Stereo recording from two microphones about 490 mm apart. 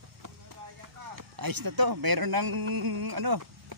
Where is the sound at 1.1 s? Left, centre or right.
Right.